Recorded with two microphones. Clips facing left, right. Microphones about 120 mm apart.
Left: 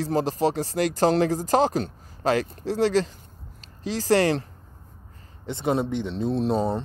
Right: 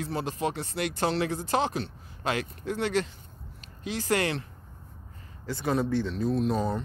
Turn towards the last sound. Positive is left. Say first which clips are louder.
# left 3 dB
turn(degrees=30)  # may be behind; listen again after turning